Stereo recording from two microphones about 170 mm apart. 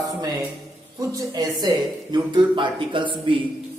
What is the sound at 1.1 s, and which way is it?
Speech, 25° right (ahead or behind).